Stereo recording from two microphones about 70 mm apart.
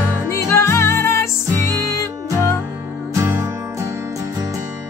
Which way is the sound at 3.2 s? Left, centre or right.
Right.